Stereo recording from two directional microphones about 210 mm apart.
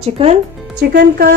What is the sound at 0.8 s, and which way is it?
Speech, 50° right (ahead or behind).